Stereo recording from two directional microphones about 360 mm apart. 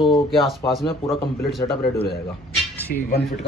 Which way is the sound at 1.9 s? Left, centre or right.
Left.